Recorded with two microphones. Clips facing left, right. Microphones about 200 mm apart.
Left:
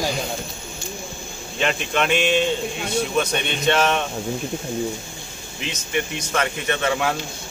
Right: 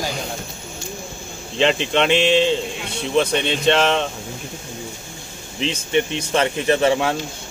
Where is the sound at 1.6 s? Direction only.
25° right (ahead or behind).